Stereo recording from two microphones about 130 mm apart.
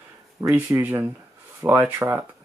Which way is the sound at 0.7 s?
15° right (ahead or behind).